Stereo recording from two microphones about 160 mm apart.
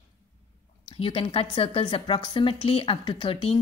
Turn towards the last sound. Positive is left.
turn(degrees=35)  # may be behind; listen again after turning